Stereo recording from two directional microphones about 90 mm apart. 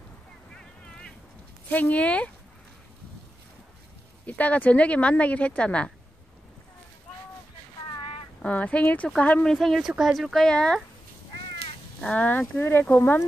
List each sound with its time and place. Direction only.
1.7 s speech: 15° left (ahead or behind)
4.3 s speech: 15° left (ahead or behind)
8.4 s speech: 15° left (ahead or behind)
9.5 s speech: centre (ahead or behind)
12.0 s speech: 15° left (ahead or behind)